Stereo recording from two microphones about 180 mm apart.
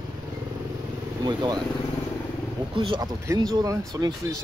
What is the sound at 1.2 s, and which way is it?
Speech, 25° right (ahead or behind).